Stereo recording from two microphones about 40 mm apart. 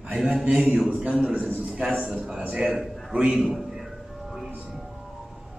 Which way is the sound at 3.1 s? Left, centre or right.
Right.